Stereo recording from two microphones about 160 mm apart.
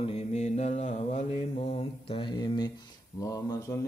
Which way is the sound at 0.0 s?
45° left (ahead or behind).